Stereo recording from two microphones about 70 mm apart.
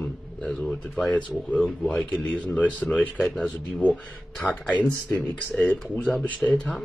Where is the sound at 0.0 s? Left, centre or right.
Centre.